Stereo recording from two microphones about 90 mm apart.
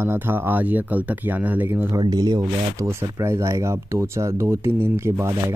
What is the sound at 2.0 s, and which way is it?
Speech, 50° right (ahead or behind).